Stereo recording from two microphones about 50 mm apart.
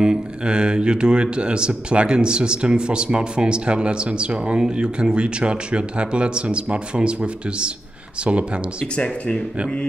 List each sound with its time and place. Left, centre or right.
0.0 s speech: centre
8.9 s speech: left